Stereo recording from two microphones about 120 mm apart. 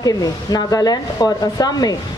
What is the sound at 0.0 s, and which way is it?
A woman's voice, 30° left (ahead or behind).